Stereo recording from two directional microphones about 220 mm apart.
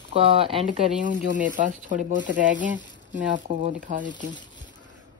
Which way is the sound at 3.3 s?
35° right (ahead or behind).